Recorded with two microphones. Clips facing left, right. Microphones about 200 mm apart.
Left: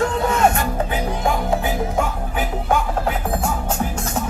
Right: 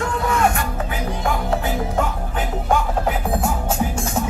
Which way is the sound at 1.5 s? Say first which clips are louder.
Left 1 dB; 10° left (ahead or behind).